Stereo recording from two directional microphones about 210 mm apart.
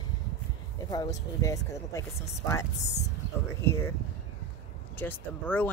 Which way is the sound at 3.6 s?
10° left (ahead or behind).